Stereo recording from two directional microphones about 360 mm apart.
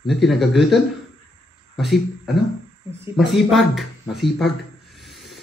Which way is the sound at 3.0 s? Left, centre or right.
Centre.